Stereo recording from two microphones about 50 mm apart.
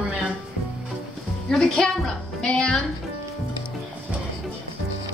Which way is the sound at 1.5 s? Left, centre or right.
Centre.